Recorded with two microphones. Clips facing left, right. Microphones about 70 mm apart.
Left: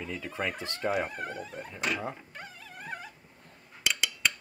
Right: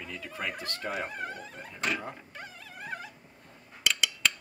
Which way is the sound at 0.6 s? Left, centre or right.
Centre.